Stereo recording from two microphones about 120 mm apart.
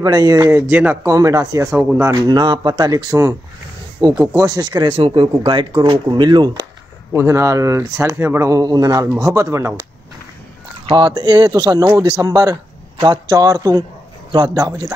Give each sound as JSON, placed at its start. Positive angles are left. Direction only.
{"t": 0.0, "sound": "speech", "side_deg": -30}
{"t": 1.0, "sound": "speech", "side_deg": -25}
{"t": 2.2, "sound": "speech", "side_deg": -35}
{"t": 4.1, "sound": "speech", "side_deg": -5}
{"t": 4.4, "sound": "speech", "side_deg": -30}
{"t": 4.9, "sound": "speech", "side_deg": -50}
{"t": 7.2, "sound": "speech", "side_deg": -20}
{"t": 10.9, "sound": "speech", "side_deg": -40}
{"t": 12.9, "sound": "speech", "side_deg": -40}